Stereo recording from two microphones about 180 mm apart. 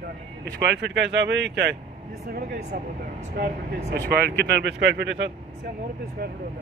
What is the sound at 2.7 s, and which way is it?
Speech, 45° right (ahead or behind).